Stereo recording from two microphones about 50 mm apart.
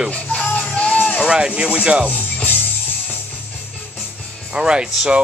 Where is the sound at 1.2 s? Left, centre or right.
Centre.